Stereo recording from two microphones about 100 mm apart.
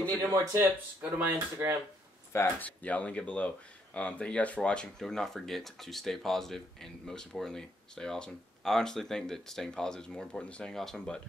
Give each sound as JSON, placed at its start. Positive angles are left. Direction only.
{"t": 0.3, "sound": "speech", "side_deg": -30}
{"t": 2.3, "sound": "speech", "side_deg": 25}
{"t": 2.8, "sound": "speech", "side_deg": 15}